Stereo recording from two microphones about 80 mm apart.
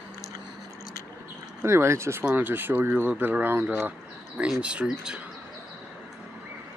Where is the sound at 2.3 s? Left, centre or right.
Right.